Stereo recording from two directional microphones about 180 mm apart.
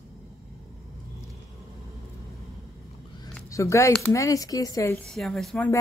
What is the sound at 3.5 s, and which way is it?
A woman's voice, 15° left (ahead or behind).